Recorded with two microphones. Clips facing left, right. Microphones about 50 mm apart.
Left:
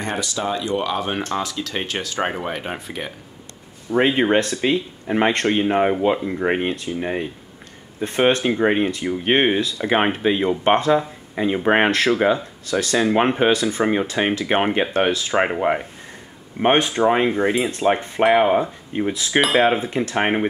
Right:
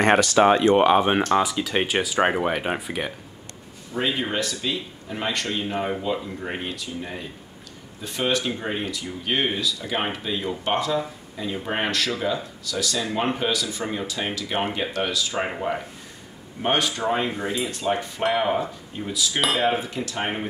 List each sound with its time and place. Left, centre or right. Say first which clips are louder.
0.0 s speech: right 8 dB; right
1.3 s speech: right 4 dB; centre
3.9 s speech: left 9 dB; left
16.6 s speech: left 7 dB; left